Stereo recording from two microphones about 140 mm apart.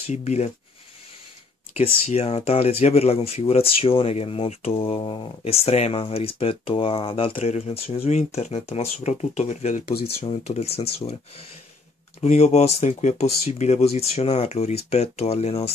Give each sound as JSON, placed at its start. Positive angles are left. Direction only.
{"t": 0.0, "sound": "speech", "side_deg": 50}
{"t": 1.8, "sound": "speech", "side_deg": 50}
{"t": 5.4, "sound": "speech", "side_deg": 45}
{"t": 10.0, "sound": "speech", "side_deg": 40}
{"t": 12.2, "sound": "speech", "side_deg": 50}